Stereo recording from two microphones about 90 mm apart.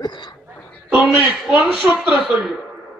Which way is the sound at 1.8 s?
20° right (ahead or behind).